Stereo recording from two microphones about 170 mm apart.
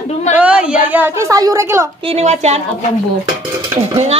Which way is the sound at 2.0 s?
35° right (ahead or behind).